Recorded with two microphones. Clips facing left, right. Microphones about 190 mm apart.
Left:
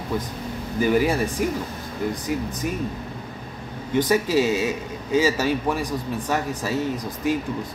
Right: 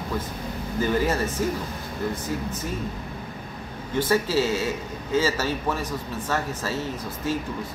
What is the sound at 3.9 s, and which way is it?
A man's voice, 15° left (ahead or behind).